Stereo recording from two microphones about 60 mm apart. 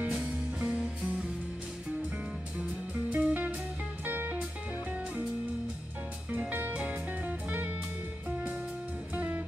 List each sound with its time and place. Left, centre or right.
0.1 s music: centre
3.1 s music: right
6.5 s music: right
9.1 s music: right